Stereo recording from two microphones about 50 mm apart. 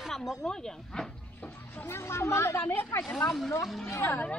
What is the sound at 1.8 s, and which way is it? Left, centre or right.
Speech, left.